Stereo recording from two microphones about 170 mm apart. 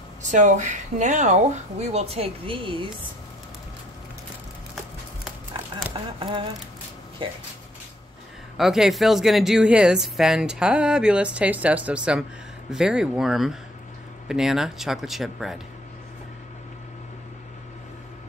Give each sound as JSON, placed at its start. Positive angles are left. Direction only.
{"t": 0.3, "sound": "speech", "side_deg": -45}
{"t": 5.9, "sound": "speech", "side_deg": -30}
{"t": 8.5, "sound": "a woman's voice", "side_deg": 0}